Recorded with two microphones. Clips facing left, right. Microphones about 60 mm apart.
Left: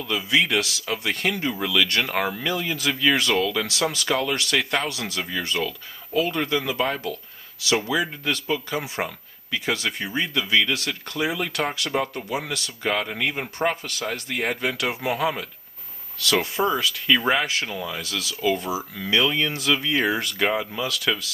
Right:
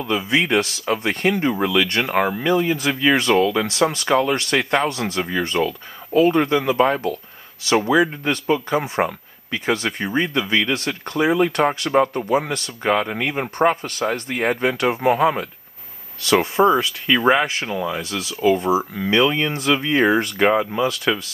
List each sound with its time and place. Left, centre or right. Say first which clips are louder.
0.0 s speech: right 3 dB; right
2.0 s speech: right 5 dB; centre